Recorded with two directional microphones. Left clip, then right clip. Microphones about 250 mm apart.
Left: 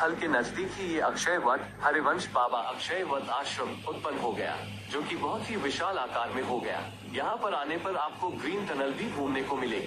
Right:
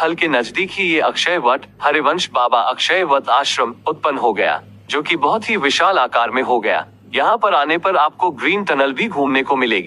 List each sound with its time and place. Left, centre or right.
0.0 s speech: right